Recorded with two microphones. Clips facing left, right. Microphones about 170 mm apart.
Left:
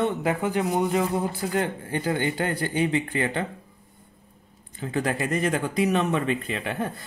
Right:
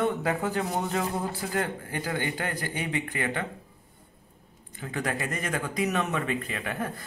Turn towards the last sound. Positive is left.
turn(degrees=25)  # may be behind; listen again after turning